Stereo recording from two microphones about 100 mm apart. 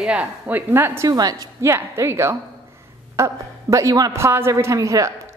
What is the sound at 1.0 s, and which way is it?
Speech, 40° right (ahead or behind).